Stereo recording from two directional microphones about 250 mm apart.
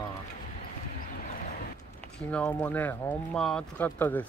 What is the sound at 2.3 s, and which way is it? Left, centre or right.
Speech, centre.